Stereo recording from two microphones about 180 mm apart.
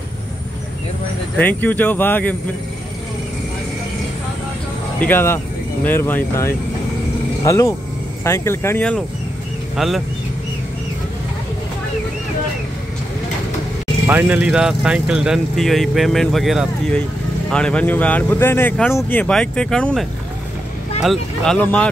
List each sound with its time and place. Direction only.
1.4 s speech: 10° left (ahead or behind)
5.0 s speech: 10° left (ahead or behind)
14.0 s speech: 10° right (ahead or behind)